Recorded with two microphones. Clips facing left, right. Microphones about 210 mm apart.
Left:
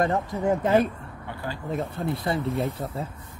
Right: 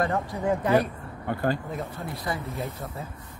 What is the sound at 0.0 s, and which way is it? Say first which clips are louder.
Speech: left 2 dB; 20° left (ahead or behind).